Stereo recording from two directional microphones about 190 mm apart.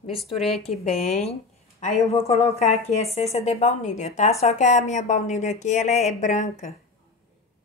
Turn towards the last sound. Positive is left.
turn(degrees=40)  # may be behind; listen again after turning